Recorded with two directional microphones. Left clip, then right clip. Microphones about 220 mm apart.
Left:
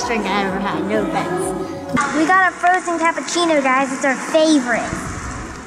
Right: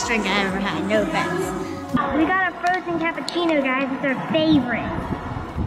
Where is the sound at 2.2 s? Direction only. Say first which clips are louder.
Left 9 dB; 20° left (ahead or behind).